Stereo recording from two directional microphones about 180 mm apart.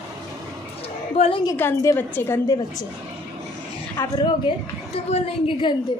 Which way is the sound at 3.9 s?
25° left (ahead or behind).